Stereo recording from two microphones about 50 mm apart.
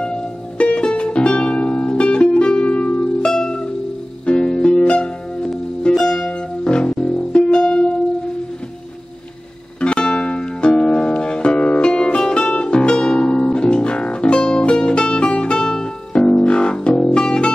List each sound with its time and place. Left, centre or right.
0.0 s music: left
3.3 s music: centre
9.8 s music: centre